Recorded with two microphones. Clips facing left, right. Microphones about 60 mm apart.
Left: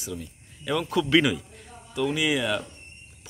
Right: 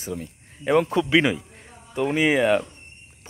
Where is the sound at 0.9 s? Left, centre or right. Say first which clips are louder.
Right 2 dB; right.